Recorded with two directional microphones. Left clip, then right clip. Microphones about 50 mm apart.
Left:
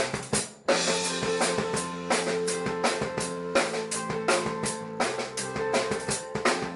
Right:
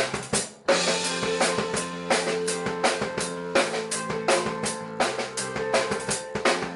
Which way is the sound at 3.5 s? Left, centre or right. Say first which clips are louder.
Right 3 dB; centre.